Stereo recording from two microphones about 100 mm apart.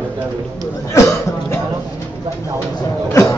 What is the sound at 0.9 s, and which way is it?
Speech, 30° left (ahead or behind).